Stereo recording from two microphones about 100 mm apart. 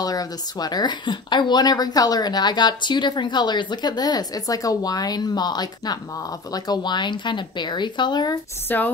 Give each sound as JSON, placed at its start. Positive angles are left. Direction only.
{"t": 0.0, "sound": "speech", "side_deg": 40}
{"t": 8.6, "sound": "speech", "side_deg": 20}